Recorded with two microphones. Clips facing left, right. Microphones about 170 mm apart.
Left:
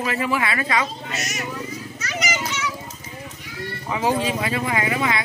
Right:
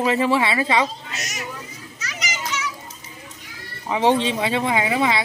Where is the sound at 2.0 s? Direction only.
55° left (ahead or behind).